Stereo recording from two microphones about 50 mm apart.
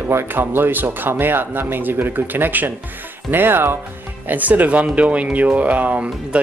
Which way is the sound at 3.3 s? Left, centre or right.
Right.